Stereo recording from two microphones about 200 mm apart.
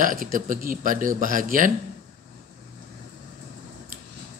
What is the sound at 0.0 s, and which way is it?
Speech, 45° right (ahead or behind).